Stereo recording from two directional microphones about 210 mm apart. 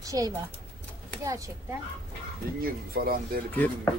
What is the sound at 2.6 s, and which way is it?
Speech, 45° right (ahead or behind).